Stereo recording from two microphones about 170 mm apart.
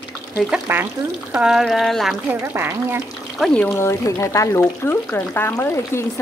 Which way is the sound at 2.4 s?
15° right (ahead or behind).